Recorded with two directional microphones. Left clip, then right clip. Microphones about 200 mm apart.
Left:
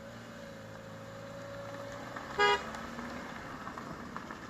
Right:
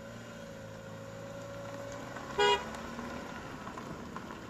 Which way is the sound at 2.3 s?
20° right (ahead or behind).